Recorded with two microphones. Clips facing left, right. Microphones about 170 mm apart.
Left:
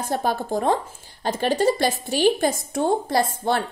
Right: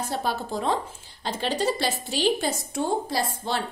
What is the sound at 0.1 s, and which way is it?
A woman's voice, 50° left (ahead or behind).